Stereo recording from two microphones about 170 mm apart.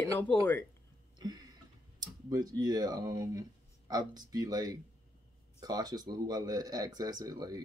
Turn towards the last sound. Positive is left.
turn(degrees=-20)  # may be behind; listen again after turning